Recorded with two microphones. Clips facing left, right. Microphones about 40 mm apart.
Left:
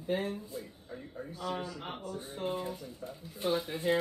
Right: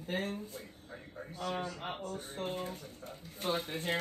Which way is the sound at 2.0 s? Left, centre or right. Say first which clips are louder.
Left 2 dB; right.